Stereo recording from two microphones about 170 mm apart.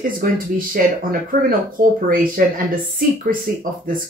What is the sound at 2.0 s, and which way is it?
Speech, 55° right (ahead or behind).